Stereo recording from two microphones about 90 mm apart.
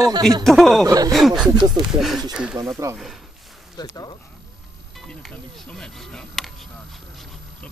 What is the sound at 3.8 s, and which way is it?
Speech, 50° left (ahead or behind).